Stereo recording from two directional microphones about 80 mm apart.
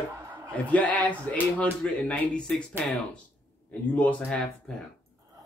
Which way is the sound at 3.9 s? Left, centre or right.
Centre.